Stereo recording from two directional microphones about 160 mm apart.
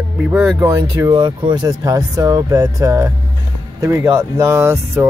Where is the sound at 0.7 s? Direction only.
20° right (ahead or behind).